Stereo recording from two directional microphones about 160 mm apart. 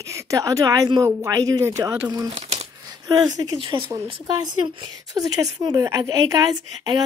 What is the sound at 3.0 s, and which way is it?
Speech, 25° right (ahead or behind).